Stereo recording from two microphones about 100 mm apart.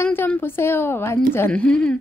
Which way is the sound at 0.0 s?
20° left (ahead or behind).